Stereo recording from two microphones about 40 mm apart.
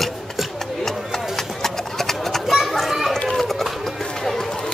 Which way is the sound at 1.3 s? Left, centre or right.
Centre.